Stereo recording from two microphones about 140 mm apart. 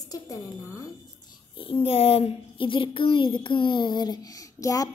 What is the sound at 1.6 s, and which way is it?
A woman's voice, 40° left (ahead or behind).